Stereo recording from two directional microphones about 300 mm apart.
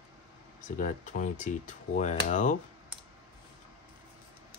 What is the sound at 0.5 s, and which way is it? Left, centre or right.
Speech, left.